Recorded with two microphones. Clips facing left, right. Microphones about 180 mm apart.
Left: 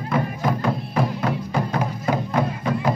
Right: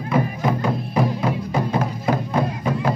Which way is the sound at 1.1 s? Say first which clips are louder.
Right 1 dB; 10° right (ahead or behind).